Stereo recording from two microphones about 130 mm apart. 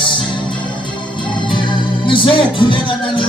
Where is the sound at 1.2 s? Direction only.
35° left (ahead or behind).